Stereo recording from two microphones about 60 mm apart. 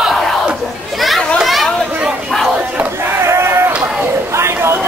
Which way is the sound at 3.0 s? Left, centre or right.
Right.